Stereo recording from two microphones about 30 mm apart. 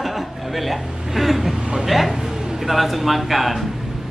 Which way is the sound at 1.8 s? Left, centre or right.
Centre.